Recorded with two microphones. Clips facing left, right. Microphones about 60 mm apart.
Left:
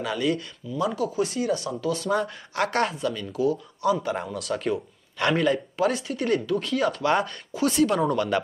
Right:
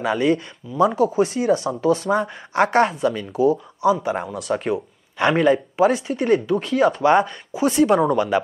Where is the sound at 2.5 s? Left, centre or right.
Right.